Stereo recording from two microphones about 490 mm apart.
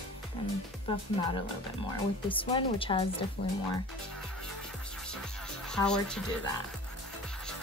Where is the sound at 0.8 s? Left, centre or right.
Centre.